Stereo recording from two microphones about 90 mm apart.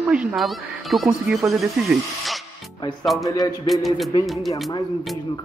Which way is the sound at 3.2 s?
45° left (ahead or behind).